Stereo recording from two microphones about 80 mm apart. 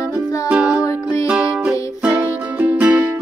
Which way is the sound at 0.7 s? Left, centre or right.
Left.